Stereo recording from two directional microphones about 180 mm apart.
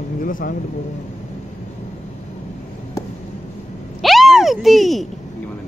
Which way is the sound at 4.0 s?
Centre (ahead or behind).